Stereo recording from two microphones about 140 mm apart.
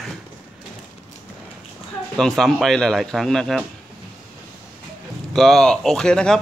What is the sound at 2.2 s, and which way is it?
Speech, centre (ahead or behind).